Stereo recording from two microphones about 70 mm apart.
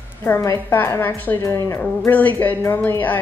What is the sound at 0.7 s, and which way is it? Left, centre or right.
Speech, left.